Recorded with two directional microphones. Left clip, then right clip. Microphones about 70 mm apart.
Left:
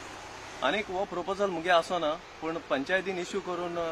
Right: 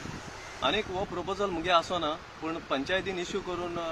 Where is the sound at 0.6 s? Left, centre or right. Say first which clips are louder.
Even; left.